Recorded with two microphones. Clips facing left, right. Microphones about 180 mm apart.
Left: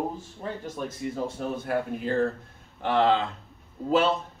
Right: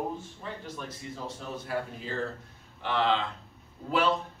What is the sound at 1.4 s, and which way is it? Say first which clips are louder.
A man's voice: left 3 dB; 55° left (ahead or behind).